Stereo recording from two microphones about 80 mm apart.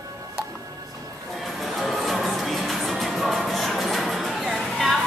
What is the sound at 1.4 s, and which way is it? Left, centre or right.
Music, centre.